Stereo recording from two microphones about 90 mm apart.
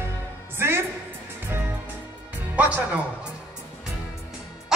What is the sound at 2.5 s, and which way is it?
Speech, 15° right (ahead or behind).